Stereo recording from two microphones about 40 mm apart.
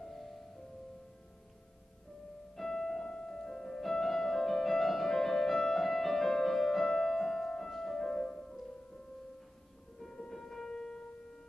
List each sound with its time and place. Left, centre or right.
0.0 s music: centre
2.5 s music: centre
6.9 s piano: centre
8.0 s music: centre
9.9 s music: centre
10.3 s a sound: centre